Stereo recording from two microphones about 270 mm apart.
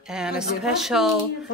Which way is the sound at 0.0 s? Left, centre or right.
Centre.